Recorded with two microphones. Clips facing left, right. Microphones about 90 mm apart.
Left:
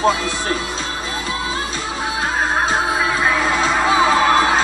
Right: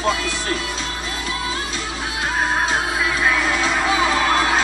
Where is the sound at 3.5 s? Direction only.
30° left (ahead or behind).